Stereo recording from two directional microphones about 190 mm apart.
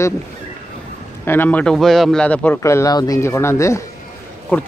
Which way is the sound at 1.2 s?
10° left (ahead or behind).